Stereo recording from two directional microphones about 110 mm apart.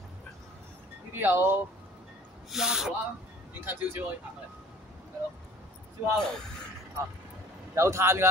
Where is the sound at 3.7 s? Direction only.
20° right (ahead or behind).